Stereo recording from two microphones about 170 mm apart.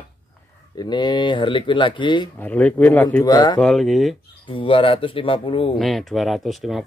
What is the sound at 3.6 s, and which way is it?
Speech, centre (ahead or behind).